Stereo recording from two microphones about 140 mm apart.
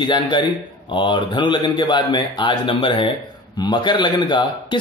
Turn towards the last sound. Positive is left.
turn(degrees=35)  # may be behind; listen again after turning